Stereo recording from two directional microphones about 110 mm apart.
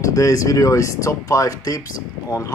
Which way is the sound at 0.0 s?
30° left (ahead or behind).